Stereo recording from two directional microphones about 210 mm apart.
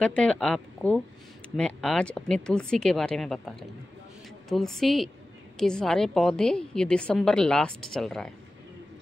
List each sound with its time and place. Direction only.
0.0 s a woman's voice: 5° left (ahead or behind)